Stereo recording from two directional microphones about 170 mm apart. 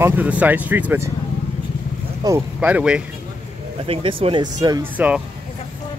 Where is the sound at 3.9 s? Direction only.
30° right (ahead or behind).